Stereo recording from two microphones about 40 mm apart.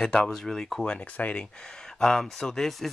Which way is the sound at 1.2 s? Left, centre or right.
Left.